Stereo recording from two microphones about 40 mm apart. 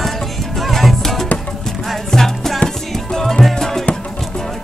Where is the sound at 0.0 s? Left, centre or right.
Centre.